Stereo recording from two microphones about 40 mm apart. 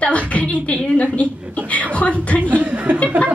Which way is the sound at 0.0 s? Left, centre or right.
Left.